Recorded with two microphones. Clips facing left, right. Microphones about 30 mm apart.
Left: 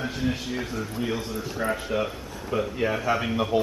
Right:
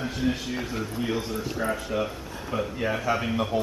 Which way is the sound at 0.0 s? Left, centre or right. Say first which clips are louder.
Right 1 dB; centre.